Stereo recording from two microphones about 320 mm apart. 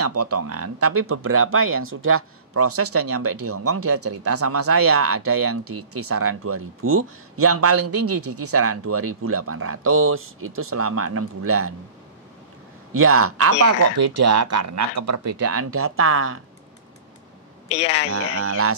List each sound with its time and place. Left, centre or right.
0.0 s speech: right
12.9 s speech: right
17.6 s speech: centre
18.1 s speech: right